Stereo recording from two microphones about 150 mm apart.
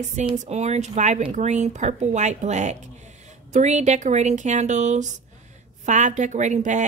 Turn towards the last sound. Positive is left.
turn(degrees=-55)  # may be behind; listen again after turning